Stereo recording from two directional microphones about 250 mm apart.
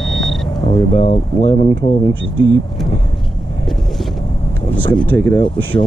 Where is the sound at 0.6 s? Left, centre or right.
Left.